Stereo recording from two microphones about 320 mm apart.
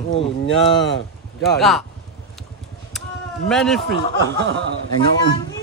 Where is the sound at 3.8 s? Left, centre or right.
Right.